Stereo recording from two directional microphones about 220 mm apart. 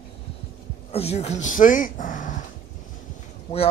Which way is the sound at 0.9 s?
30° left (ahead or behind).